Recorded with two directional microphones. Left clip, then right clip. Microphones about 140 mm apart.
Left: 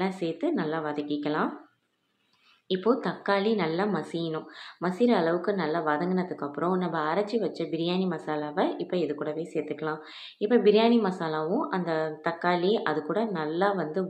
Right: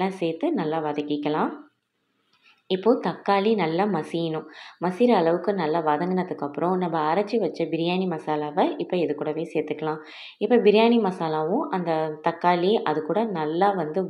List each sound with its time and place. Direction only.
0.0 s a woman's voice: 15° right (ahead or behind)
2.7 s a woman's voice: 15° right (ahead or behind)